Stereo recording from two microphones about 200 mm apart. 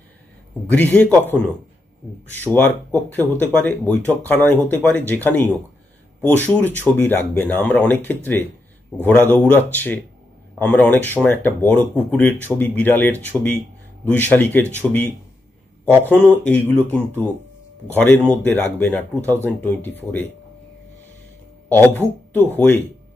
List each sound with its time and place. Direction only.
0.7 s speech: 5° left (ahead or behind)
13.3 s speech: 10° right (ahead or behind)
14.0 s speech: 10° left (ahead or behind)
21.6 s speech: 10° left (ahead or behind)